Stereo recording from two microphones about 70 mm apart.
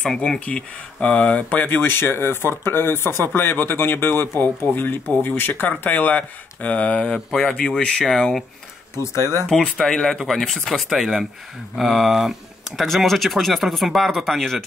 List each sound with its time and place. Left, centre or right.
0.0 s speech: centre
8.9 s speech: left
9.5 s speech: centre